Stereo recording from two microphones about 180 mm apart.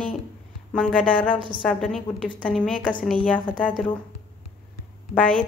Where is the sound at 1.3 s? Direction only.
30° right (ahead or behind).